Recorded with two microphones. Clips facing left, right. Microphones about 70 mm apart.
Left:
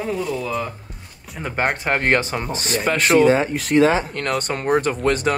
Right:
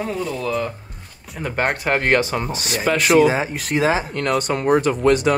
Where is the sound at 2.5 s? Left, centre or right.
Left.